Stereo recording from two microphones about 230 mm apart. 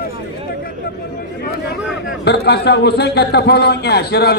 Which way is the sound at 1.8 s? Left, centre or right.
Centre.